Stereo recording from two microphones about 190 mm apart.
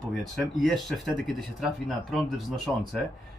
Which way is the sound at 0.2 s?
Centre (ahead or behind).